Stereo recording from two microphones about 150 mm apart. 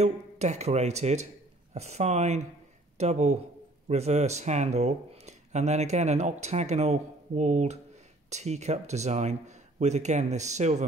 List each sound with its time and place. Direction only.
0.0 s speech: 50° right (ahead or behind)